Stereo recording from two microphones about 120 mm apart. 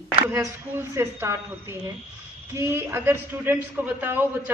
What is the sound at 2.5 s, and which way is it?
A man's voice, 20° right (ahead or behind).